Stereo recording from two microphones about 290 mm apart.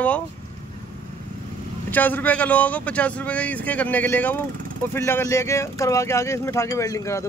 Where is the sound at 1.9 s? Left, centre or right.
Centre.